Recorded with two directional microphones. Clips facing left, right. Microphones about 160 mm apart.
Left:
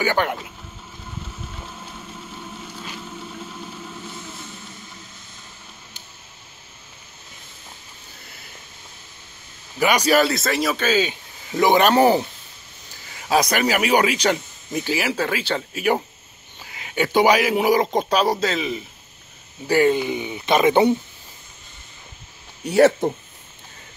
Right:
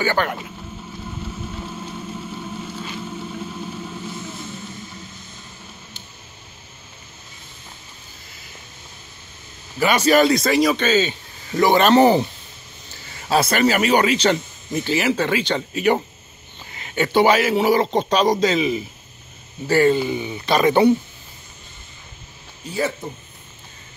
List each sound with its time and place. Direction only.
0.0 s speech: 15° left (ahead or behind)
9.8 s speech: 15° left (ahead or behind)
13.3 s speech: 10° left (ahead or behind)
19.7 s speech: 15° left (ahead or behind)
22.7 s speech: 75° left (ahead or behind)